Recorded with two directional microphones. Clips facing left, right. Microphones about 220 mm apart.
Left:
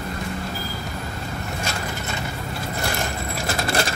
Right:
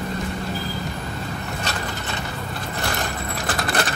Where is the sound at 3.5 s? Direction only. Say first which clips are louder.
Left 1 dB; 25° left (ahead or behind).